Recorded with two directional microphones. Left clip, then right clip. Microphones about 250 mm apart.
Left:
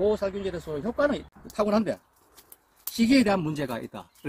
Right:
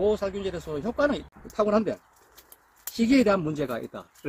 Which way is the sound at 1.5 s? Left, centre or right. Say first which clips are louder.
Right 1 dB; left.